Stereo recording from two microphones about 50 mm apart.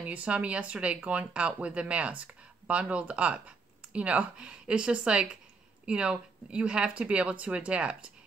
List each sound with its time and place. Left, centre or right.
0.0 s speech: right